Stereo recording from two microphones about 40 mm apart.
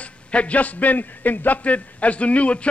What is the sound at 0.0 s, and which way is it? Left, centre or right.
A man's voice, left.